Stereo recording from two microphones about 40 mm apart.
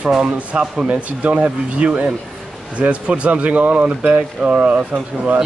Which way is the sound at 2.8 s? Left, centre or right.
Right.